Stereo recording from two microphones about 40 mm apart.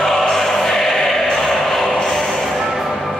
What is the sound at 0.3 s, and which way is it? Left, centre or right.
Music, centre.